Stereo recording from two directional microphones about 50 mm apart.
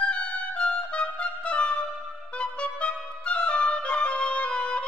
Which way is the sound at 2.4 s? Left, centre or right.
Left.